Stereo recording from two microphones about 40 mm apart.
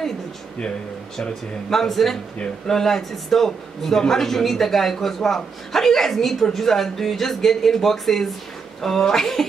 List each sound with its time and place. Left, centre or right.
1.1 s a man's voice: centre